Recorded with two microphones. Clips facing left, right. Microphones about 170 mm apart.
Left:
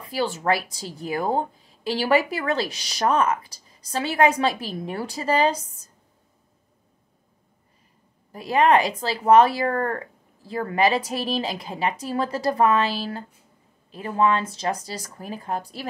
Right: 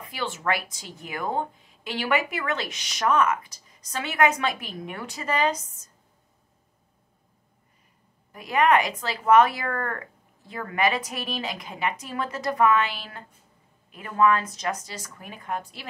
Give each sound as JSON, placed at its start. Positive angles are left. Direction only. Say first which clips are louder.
{"t": 0.0, "sound": "a woman's voice", "louder": "left 5 dB", "side_deg": 35}
{"t": 8.3, "sound": "a woman's voice", "louder": "left 3 dB", "side_deg": 30}